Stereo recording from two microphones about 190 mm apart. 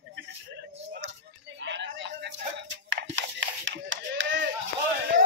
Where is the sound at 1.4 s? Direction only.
70° right (ahead or behind).